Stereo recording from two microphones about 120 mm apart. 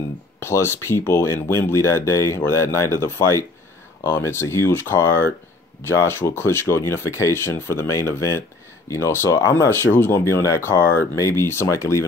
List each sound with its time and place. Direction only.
0.4 s speech: 20° left (ahead or behind)